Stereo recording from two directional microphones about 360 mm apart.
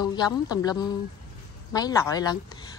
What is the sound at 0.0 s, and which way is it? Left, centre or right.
A woman's voice, centre.